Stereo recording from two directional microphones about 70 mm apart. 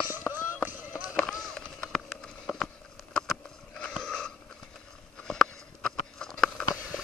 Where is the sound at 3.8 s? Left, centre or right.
Centre.